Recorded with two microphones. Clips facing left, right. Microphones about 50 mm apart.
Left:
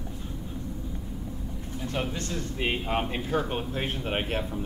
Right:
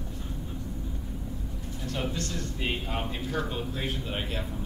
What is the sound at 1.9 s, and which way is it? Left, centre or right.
A man's voice, left.